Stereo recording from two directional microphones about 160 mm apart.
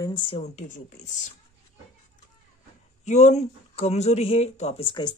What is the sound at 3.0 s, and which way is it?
Speech, 45° left (ahead or behind).